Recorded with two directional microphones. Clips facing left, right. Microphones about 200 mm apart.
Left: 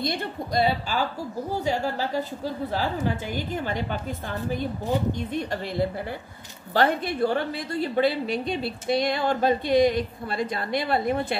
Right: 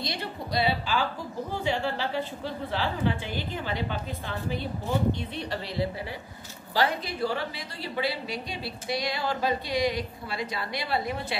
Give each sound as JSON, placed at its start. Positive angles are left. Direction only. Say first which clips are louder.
{"t": 0.0, "sound": "a woman's voice", "louder": "left 5 dB", "side_deg": 50}